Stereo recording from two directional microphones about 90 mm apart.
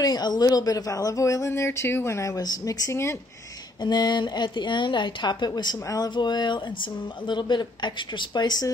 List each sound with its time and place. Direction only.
0.0 s speech: 50° left (ahead or behind); by 3.2 s 30° left (ahead or behind)
3.8 s speech: 55° left (ahead or behind)
5.9 s a sound: 45° left (ahead or behind)
6.1 s speech: 55° left (ahead or behind)